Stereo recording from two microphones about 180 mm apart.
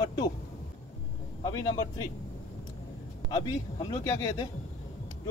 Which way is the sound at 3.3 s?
20° left (ahead or behind).